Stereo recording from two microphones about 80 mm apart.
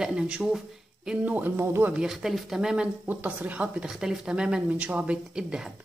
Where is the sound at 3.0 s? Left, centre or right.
Centre.